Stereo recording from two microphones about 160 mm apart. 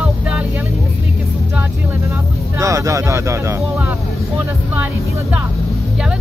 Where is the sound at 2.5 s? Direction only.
20° right (ahead or behind).